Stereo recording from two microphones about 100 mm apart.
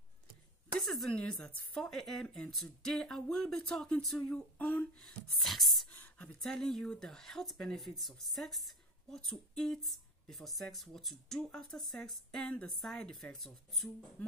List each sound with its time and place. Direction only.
0.8 s a woman's voice: centre (ahead or behind)
1.9 s speech: 5° left (ahead or behind)
4.2 s a woman's voice: 15° left (ahead or behind)
5.0 s speech: centre (ahead or behind)